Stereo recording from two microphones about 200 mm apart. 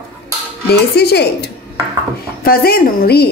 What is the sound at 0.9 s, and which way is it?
A woman's voice, 55° left (ahead or behind).